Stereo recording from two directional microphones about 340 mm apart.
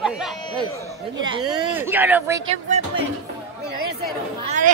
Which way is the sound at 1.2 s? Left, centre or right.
Centre.